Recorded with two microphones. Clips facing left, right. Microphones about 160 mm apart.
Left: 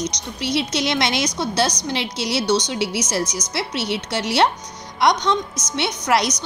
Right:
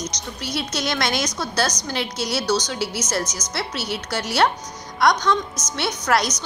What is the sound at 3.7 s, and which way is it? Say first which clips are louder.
Speech: left 7 dB; 70° left (ahead or behind).